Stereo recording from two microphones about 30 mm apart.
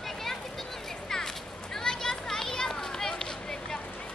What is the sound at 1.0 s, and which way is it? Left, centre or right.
Children playing, centre.